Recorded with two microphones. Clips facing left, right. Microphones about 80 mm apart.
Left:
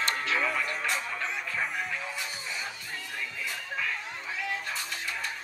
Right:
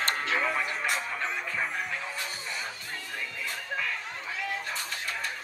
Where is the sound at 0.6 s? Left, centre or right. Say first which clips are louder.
Right 1 dB; centre.